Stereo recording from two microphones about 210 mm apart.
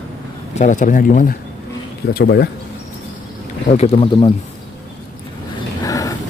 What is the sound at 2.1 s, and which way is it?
Speech, 50° left (ahead or behind).